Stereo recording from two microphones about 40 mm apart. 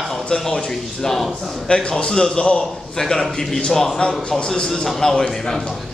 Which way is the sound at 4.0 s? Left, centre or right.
Left.